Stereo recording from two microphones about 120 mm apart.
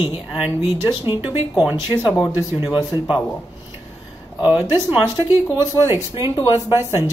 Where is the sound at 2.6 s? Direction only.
35° left (ahead or behind).